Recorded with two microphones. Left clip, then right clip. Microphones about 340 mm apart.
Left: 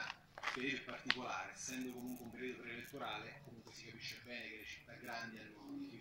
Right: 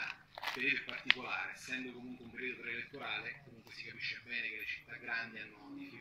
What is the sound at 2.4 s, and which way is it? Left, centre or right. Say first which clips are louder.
A man's voice: right 7 dB; centre.